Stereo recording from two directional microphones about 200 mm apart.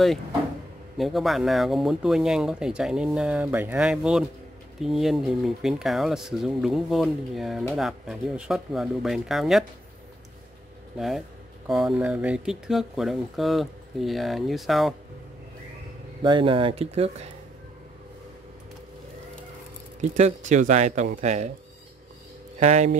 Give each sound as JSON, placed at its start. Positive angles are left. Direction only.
{"t": 0.9, "sound": "speech", "side_deg": 0}
{"t": 11.0, "sound": "speech", "side_deg": 0}
{"t": 16.2, "sound": "speech", "side_deg": -25}
{"t": 20.0, "sound": "speech", "side_deg": -35}
{"t": 22.6, "sound": "speech", "side_deg": -35}